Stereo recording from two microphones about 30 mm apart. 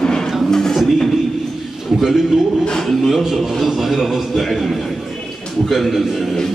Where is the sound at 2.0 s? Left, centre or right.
Centre.